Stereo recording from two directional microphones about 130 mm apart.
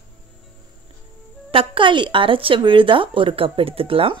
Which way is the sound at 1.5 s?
45° right (ahead or behind).